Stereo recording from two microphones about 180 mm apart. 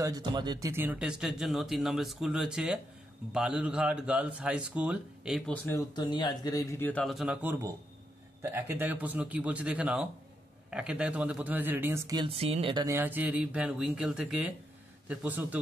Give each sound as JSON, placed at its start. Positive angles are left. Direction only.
{"t": 0.0, "sound": "speech", "side_deg": -20}
{"t": 5.5, "sound": "a man's voice", "side_deg": 10}
{"t": 5.9, "sound": "a man's voice", "side_deg": 25}
{"t": 8.4, "sound": "speech", "side_deg": -15}
{"t": 12.2, "sound": "speech", "side_deg": -35}
{"t": 12.8, "sound": "speech", "side_deg": -10}